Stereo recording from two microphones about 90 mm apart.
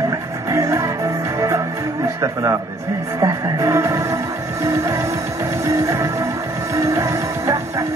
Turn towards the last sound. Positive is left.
turn(degrees=-35)  # may be behind; listen again after turning